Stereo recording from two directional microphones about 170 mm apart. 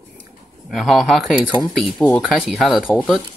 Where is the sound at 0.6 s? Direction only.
Centre (ahead or behind).